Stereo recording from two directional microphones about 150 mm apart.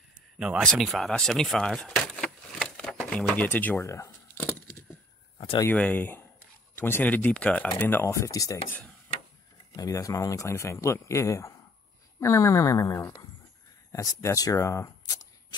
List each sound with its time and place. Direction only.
0.4 s speech: 5° right (ahead or behind)
0.7 s a sound: centre (ahead or behind); by 4.8 s 15° left (ahead or behind)
5.4 s speech: 30° left (ahead or behind)
5.7 s speech: 10° left (ahead or behind)
9.8 s speech: 25° left (ahead or behind)
14.2 s speech: 20° left (ahead or behind)